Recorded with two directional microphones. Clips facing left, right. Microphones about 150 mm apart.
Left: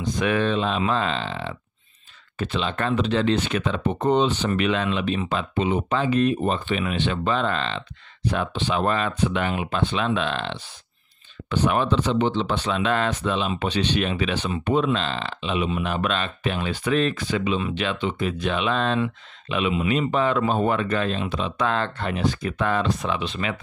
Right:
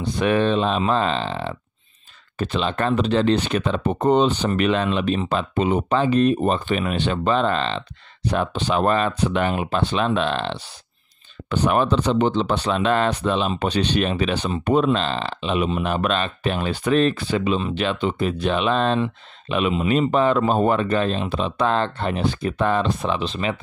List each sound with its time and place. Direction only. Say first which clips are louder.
0.2 s speech: right 4 dB; 30° right (ahead or behind)
6.5 s speech: right 3 dB; 45° right (ahead or behind)